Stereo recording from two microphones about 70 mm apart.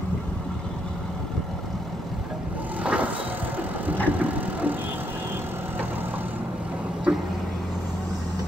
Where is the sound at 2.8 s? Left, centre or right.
Centre.